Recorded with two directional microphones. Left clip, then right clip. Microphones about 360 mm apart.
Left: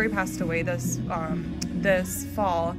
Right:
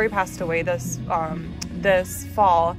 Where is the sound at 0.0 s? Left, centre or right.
Centre.